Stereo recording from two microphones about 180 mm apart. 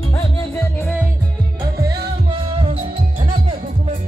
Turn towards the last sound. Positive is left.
turn(degrees=-30)  # may be behind; listen again after turning